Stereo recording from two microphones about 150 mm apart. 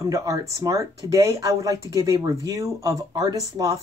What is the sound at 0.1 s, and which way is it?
Speech, 25° right (ahead or behind).